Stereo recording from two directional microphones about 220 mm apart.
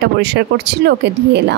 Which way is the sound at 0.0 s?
50° right (ahead or behind).